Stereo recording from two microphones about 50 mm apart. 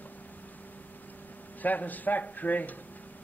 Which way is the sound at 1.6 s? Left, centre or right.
Left.